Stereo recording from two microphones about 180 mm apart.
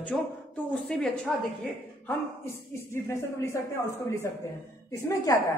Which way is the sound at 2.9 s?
15° left (ahead or behind).